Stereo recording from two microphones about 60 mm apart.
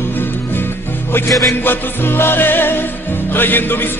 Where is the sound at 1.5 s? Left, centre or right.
Left.